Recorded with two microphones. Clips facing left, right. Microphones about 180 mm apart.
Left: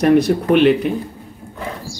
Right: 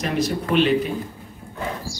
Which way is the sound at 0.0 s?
60° left (ahead or behind).